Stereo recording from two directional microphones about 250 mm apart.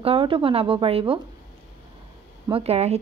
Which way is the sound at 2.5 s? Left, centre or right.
Right.